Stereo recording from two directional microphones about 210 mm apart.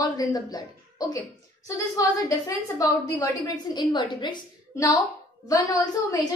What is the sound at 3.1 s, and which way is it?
A woman's voice, 20° left (ahead or behind).